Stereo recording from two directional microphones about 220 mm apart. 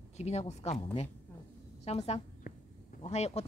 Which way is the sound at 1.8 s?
30° left (ahead or behind).